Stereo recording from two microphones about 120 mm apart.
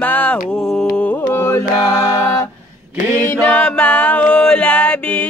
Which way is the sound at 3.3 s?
10° left (ahead or behind).